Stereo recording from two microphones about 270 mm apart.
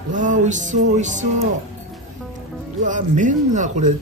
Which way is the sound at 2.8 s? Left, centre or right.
Right.